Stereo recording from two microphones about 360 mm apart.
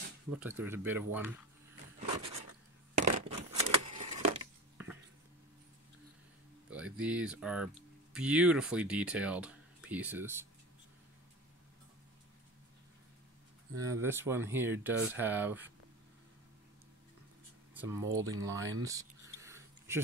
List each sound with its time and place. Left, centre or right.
0.4 s speech: centre
2.0 s a sound: centre
6.7 s speech: centre
13.7 s speech: centre
17.7 s speech: centre
18.8 s a sound: centre